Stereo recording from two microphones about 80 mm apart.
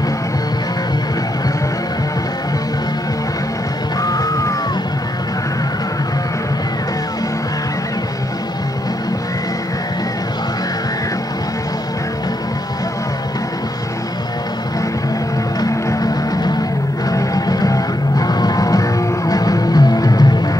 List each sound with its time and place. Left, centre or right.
4.0 s music: left
15.6 s music: left